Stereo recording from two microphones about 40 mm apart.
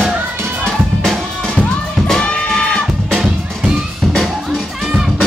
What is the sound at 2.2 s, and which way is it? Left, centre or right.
Music, centre.